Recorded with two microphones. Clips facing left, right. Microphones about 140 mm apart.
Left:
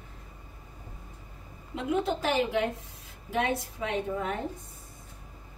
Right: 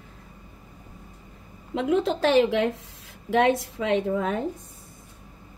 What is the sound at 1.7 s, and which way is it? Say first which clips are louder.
A woman's voice: right 6 dB; 90° right.